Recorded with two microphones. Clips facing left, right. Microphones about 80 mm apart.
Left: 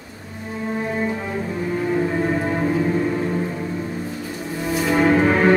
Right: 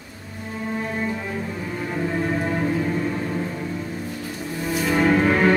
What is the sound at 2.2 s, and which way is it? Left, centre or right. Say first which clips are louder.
Music: left 2 dB; centre.